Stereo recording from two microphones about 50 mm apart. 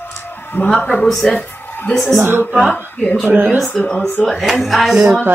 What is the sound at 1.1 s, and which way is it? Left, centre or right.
Speech, centre.